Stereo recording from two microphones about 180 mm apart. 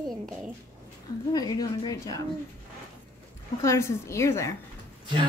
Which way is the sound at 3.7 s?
15° left (ahead or behind).